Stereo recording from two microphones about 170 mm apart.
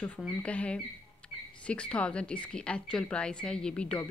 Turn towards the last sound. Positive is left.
turn(degrees=5)  # may be behind; listen again after turning